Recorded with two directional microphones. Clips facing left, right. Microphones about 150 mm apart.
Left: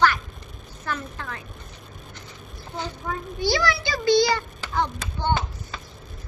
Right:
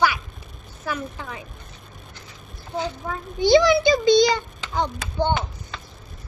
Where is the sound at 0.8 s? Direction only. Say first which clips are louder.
Right 2 dB; 10° right (ahead or behind).